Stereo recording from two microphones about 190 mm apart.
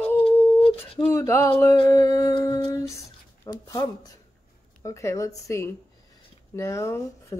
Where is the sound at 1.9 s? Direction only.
15° left (ahead or behind).